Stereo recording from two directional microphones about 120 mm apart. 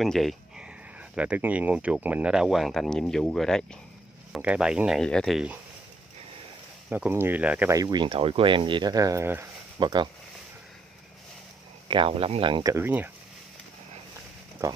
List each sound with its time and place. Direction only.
0.0 s speech: centre (ahead or behind)
1.1 s speech: 10° right (ahead or behind); by 3.6 s 5° left (ahead or behind)
4.3 s speech: 10° right (ahead or behind)
6.9 s speech: 15° right (ahead or behind)
7.7 s speech: 35° right (ahead or behind)
9.8 s speech: 40° right (ahead or behind)
11.9 s speech: 50° right (ahead or behind)
12.6 s speech: 20° right (ahead or behind)